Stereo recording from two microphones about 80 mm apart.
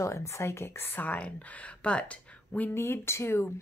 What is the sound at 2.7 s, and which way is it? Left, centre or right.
Speech, left.